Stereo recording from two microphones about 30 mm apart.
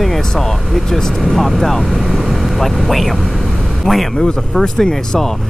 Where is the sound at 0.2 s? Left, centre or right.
Centre.